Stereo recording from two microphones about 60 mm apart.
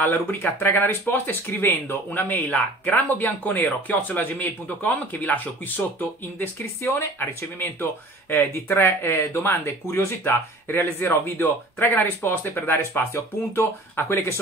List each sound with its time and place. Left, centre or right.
0.0 s speech: left